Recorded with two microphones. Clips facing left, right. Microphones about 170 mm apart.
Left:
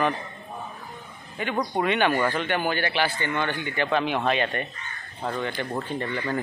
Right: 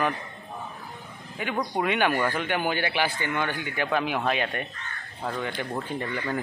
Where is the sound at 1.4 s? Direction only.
5° right (ahead or behind).